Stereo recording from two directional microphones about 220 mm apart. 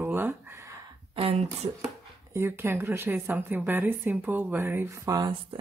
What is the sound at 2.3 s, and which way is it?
A woman's voice, 10° right (ahead or behind).